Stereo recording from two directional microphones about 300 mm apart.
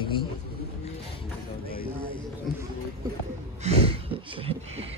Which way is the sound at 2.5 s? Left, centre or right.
Centre.